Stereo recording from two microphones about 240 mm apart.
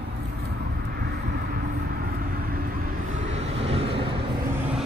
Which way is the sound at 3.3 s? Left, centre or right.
Right.